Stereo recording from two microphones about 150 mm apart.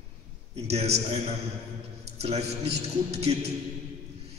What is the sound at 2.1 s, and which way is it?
Speech, 45° right (ahead or behind).